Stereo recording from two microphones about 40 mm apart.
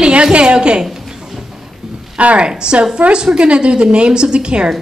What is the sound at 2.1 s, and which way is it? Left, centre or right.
A woman's voice, right.